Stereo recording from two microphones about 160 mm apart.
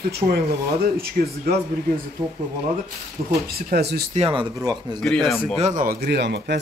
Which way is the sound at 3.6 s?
80° right.